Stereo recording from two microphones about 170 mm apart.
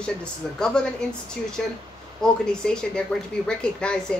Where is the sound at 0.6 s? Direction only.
5° left (ahead or behind).